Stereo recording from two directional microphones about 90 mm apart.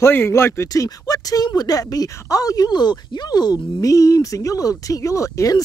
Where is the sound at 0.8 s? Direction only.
45° left (ahead or behind).